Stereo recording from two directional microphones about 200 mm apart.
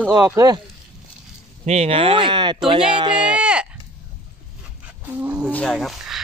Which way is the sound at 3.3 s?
5° right (ahead or behind).